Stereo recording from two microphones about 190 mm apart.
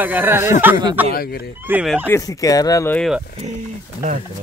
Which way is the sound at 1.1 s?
55° left (ahead or behind).